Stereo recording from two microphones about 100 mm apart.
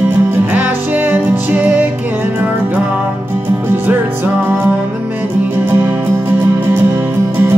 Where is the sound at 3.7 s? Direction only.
20° right (ahead or behind).